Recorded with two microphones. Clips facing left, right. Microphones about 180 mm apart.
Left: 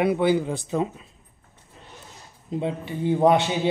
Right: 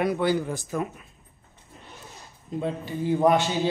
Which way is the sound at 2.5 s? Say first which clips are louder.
Left 2 dB; 20° left (ahead or behind).